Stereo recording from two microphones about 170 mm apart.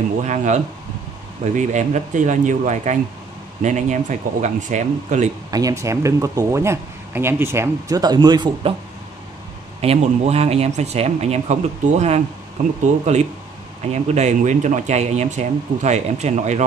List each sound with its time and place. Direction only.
0.2 s speech: 45° right (ahead or behind)
5.5 s speech: 20° right (ahead or behind)
9.8 s speech: 35° right (ahead or behind)